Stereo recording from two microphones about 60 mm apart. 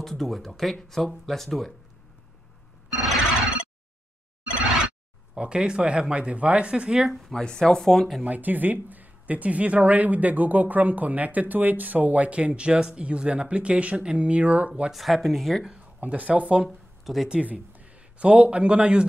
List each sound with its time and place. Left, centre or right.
0.0 s speech: centre
3.0 s music: centre
5.3 s speech: centre
7.1 s speech: centre
7.4 s speech: centre
8.2 s speech: right
14.9 s speech: centre
15.6 s a sound: centre
16.0 s speech: right
16.6 s speech: centre
17.3 s speech: right